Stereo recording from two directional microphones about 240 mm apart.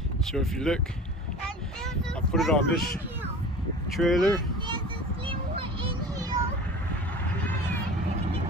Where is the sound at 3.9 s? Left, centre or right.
Centre.